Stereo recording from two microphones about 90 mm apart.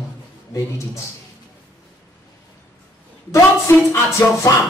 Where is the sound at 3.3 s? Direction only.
30° left (ahead or behind).